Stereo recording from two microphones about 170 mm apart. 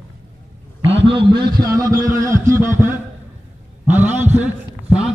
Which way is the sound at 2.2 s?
15° right (ahead or behind).